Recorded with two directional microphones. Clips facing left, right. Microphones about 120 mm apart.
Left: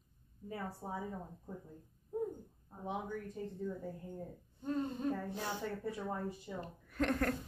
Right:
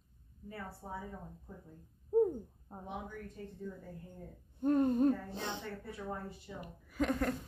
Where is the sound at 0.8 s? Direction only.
25° left (ahead or behind).